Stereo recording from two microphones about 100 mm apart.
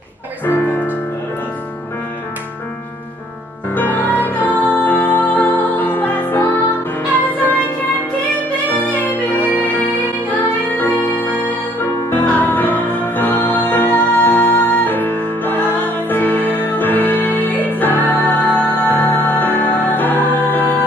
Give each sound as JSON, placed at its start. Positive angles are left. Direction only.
{"t": 3.7, "sound": "music", "side_deg": 20}
{"t": 8.6, "sound": "music", "side_deg": 15}